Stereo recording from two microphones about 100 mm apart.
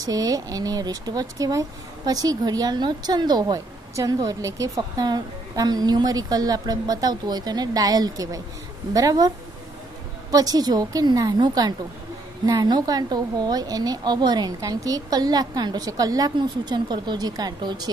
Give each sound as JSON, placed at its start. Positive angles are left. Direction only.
{"t": 0.0, "sound": "a woman's voice", "side_deg": -35}
{"t": 10.3, "sound": "a woman's voice", "side_deg": -40}